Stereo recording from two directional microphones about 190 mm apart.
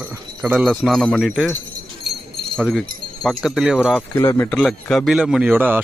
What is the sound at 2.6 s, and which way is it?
Speech, centre (ahead or behind).